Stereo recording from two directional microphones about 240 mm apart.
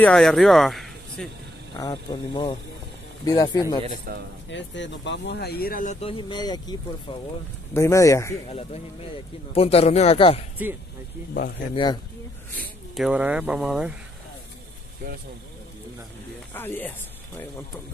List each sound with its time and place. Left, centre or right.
0.0 s speech: centre
1.8 s speech: centre
3.8 s a man's voice: right
4.5 s speech: left; by 8.4 s centre
8.5 s a man's voice: left
11.7 s a man's voice: centre
12.5 s speech: centre
16.5 s speech: centre